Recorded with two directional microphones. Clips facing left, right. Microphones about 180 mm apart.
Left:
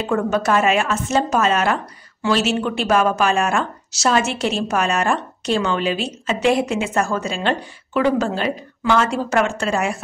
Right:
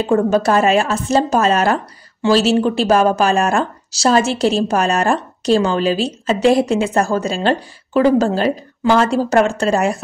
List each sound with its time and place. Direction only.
0.0 s a woman's voice: 35° right (ahead or behind)